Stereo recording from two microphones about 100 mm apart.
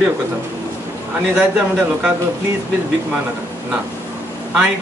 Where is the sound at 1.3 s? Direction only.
15° right (ahead or behind).